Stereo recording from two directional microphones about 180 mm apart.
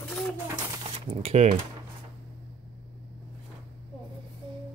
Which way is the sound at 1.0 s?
30° right (ahead or behind).